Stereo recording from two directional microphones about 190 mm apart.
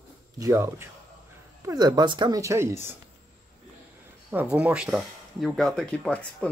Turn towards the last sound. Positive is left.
turn(degrees=5)  # may be behind; listen again after turning